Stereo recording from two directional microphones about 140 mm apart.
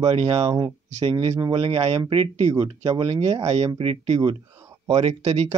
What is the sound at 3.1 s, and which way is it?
Speech, 45° right (ahead or behind).